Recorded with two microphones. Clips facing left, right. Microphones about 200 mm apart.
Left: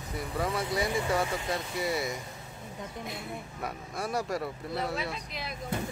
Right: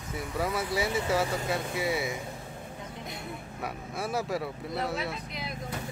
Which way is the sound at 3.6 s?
5° right (ahead or behind).